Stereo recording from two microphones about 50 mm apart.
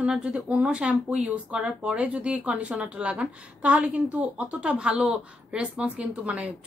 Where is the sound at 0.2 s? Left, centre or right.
Right.